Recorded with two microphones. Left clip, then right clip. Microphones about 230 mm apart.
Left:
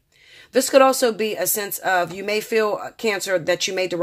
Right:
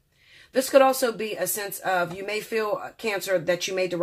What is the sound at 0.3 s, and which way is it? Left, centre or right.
Speech, left.